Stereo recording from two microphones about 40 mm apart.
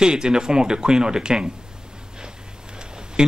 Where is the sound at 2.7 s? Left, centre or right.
Right.